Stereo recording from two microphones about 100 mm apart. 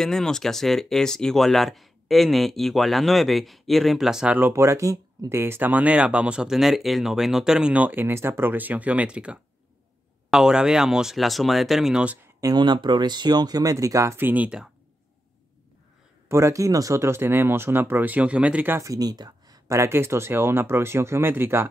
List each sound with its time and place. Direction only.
0.0 s speech: 5° left (ahead or behind)
4.4 s speech: 25° right (ahead or behind); by 12.2 s 10° right (ahead or behind)
12.5 s speech: 50° right (ahead or behind); by 14.1 s 35° right (ahead or behind)
14.1 s speech: 20° right (ahead or behind)
16.3 s speech: 30° right (ahead or behind)
18.8 s speech: 35° right (ahead or behind)
19.8 s speech: 25° right (ahead or behind)